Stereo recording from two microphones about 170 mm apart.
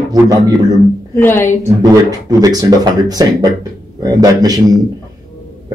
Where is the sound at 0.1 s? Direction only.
20° right (ahead or behind).